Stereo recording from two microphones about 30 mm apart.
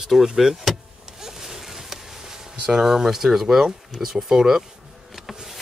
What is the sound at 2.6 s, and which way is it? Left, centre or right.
Speech, centre.